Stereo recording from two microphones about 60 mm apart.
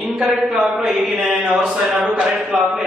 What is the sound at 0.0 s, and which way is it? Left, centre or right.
Speech, centre.